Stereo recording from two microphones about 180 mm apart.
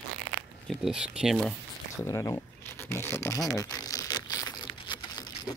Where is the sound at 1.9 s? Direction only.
15° left (ahead or behind).